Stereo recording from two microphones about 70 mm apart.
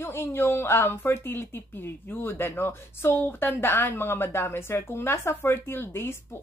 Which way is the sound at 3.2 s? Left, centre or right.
Left.